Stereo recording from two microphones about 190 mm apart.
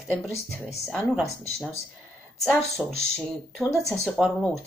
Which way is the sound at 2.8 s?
Centre (ahead or behind).